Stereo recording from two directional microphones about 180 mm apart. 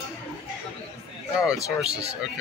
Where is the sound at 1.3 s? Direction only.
5° right (ahead or behind).